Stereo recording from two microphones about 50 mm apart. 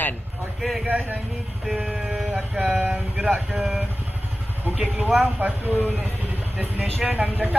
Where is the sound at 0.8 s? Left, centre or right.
Right.